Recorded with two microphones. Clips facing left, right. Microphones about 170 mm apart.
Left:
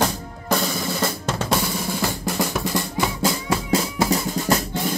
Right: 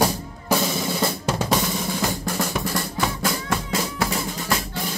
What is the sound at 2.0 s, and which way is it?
Drum, 10° left (ahead or behind).